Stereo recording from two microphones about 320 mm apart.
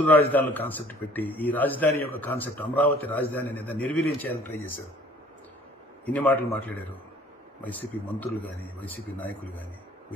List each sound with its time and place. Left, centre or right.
0.3 s a man's voice: centre
6.0 s a man's voice: centre